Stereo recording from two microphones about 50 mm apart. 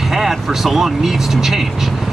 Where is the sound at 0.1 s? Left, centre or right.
Centre.